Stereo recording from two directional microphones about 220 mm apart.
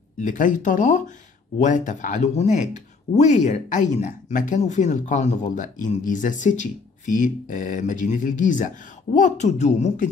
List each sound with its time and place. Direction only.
0.2 s speech: 35° left (ahead or behind)